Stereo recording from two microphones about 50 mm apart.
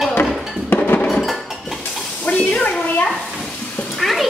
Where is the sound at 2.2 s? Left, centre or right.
Left.